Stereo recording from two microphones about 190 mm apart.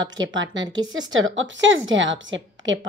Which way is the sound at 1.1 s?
90° right.